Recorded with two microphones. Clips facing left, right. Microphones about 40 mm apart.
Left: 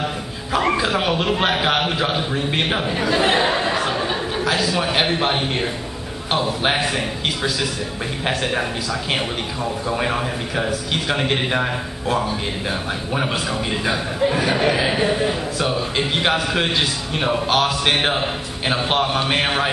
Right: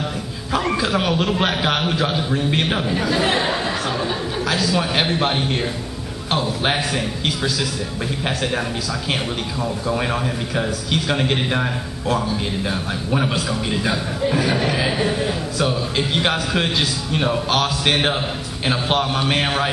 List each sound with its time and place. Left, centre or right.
0.6 s a man's voice: centre
9.8 s a man's voice: centre